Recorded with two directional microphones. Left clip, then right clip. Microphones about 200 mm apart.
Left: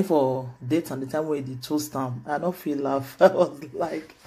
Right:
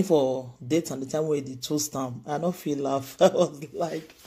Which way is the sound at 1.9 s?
30° right (ahead or behind).